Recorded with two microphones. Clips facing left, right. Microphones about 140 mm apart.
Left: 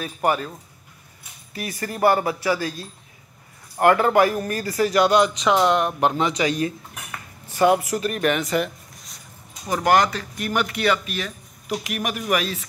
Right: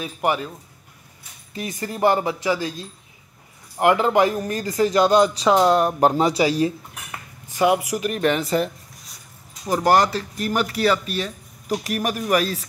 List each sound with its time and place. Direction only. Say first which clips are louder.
0.0 s speech: even; 15° right (ahead or behind)
1.5 s a man's voice: right 1 dB; 20° right (ahead or behind)
7.1 s cutlery: even; 15° right (ahead or behind)
8.2 s speech: right 2 dB; 30° right (ahead or behind)
9.8 s a man's voice: right 1 dB; 35° right (ahead or behind)